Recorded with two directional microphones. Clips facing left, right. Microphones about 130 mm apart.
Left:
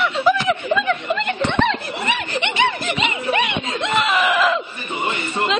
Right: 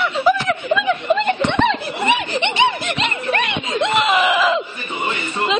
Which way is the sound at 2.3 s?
30° right (ahead or behind).